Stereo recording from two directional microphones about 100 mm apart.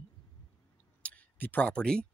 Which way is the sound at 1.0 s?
15° left (ahead or behind).